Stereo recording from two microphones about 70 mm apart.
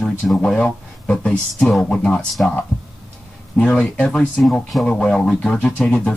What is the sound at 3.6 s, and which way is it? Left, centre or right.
Speech, centre.